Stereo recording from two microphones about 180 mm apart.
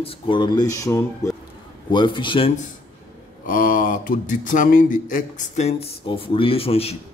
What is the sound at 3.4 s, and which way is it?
Speech, 50° left (ahead or behind).